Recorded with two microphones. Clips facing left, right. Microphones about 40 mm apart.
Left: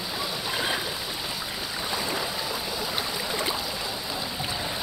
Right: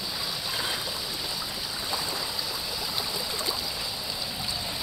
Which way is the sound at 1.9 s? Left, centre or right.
Left.